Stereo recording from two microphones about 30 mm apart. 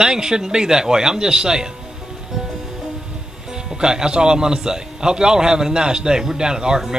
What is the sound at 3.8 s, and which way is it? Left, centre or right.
Speech, right.